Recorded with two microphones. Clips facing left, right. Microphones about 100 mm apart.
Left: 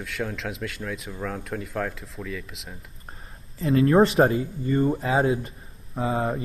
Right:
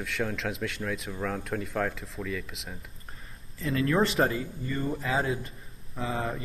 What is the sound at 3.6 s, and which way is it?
Speech, 35° left (ahead or behind).